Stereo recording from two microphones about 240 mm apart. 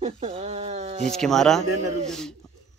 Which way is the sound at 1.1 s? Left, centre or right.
Centre.